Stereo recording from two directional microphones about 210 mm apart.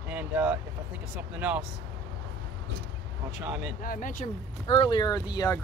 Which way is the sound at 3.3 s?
5° right (ahead or behind).